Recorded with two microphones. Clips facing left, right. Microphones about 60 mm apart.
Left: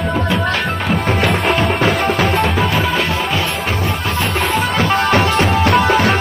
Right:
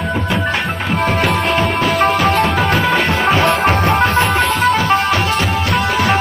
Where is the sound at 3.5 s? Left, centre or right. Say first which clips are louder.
Right 7 dB; right.